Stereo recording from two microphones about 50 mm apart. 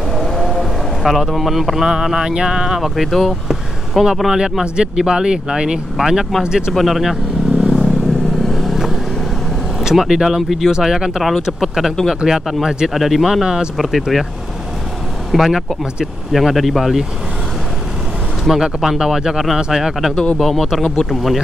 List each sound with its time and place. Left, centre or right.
0.1 s speech: centre
2.8 s speech: centre
6.7 s vehicle: centre
9.8 s speech: centre
12.6 s speech: centre
12.9 s speech: centre
15.3 s speech: centre
18.6 s speech: centre